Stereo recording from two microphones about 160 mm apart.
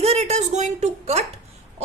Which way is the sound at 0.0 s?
45° right (ahead or behind).